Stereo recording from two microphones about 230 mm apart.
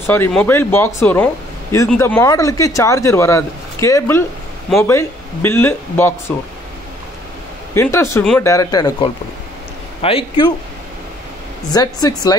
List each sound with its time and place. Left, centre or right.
0.0 s speech: centre
7.7 s speech: centre
11.7 s speech: centre